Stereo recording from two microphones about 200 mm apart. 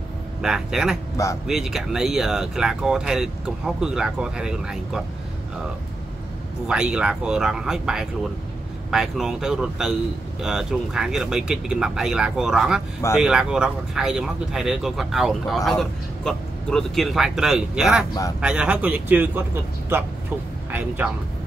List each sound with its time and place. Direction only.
0.4 s speech: 5° right (ahead or behind)
1.1 s speech: 15° left (ahead or behind)
1.5 s speech: centre (ahead or behind)
6.7 s speech: 5° right (ahead or behind)